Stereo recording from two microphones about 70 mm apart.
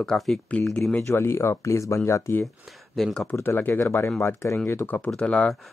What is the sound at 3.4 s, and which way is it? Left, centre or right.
Speech, left.